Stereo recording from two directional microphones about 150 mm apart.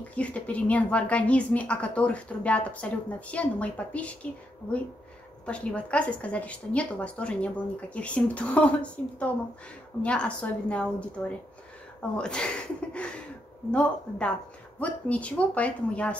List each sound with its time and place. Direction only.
0.1 s a woman's voice: 10° left (ahead or behind)
5.4 s a woman's voice: 5° left (ahead or behind)